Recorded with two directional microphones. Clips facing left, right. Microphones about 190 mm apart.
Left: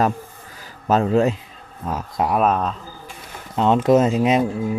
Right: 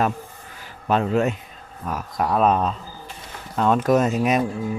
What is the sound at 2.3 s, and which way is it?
Speech, 5° left (ahead or behind).